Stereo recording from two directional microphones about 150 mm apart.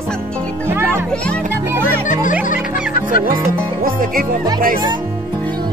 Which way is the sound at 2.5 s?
65° left (ahead or behind).